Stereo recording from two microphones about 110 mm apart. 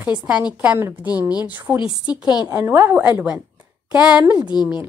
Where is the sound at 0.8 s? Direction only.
25° right (ahead or behind).